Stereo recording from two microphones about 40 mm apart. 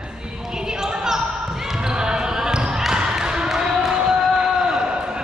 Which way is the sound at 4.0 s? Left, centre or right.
Centre.